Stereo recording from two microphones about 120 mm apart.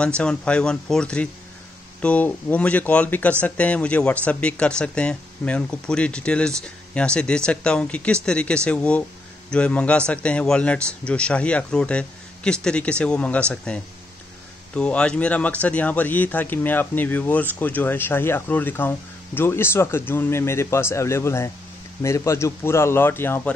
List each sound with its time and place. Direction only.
0.2 s speech: 10° left (ahead or behind)
14.8 s a man's voice: 10° left (ahead or behind)